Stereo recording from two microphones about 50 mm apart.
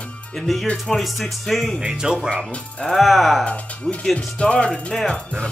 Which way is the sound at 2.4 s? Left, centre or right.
Left.